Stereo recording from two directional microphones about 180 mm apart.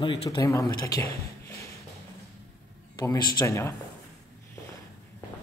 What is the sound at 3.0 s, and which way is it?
Speech, 20° left (ahead or behind).